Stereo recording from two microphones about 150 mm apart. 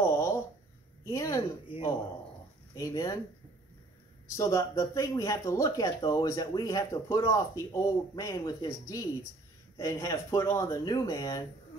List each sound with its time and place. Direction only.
0.0 s a sound: 15° left (ahead or behind)
1.0 s speech: 20° left (ahead or behind)
1.7 s speech: 35° left (ahead or behind)
4.4 s speech: 20° left (ahead or behind)